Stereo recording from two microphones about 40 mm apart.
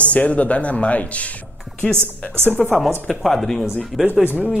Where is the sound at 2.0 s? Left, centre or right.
Right.